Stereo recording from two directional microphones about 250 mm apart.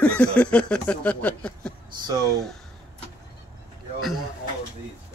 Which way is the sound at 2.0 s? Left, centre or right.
Centre.